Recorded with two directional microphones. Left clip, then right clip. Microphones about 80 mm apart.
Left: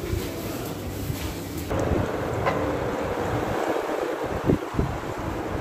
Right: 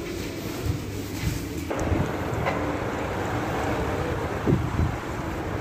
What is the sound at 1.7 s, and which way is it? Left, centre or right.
Wind noise, left.